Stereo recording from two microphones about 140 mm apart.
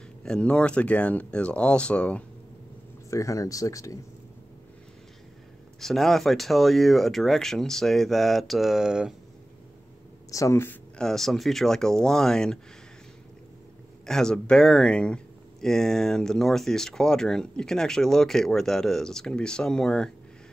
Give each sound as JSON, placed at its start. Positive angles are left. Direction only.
{"t": 0.2, "sound": "speech", "side_deg": 5}
{"t": 3.1, "sound": "speech", "side_deg": 20}
{"t": 5.8, "sound": "speech", "side_deg": 0}
{"t": 10.3, "sound": "speech", "side_deg": 20}
{"t": 11.0, "sound": "speech", "side_deg": 5}
{"t": 14.0, "sound": "speech", "side_deg": 5}